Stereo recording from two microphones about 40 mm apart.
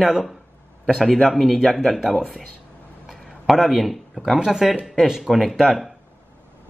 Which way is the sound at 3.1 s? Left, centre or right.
Centre.